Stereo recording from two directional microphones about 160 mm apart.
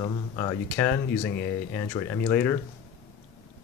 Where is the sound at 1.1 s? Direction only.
90° left.